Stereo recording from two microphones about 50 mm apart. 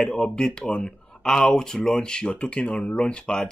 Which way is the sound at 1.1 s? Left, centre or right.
Centre.